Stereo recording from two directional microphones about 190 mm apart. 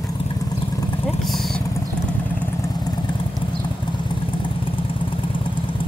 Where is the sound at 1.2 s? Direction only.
Centre (ahead or behind).